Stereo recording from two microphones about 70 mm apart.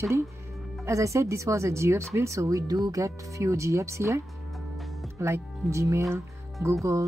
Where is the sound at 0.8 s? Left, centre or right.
Right.